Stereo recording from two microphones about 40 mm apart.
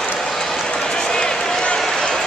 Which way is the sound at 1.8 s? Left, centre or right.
Centre.